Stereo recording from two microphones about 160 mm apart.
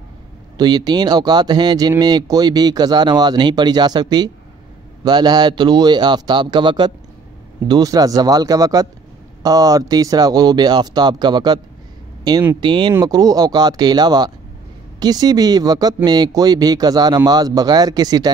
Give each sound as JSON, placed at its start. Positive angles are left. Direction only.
{"t": 0.6, "sound": "speech", "side_deg": -25}